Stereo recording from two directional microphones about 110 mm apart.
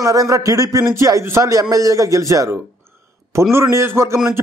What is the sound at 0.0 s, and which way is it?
Speech, 30° right (ahead or behind).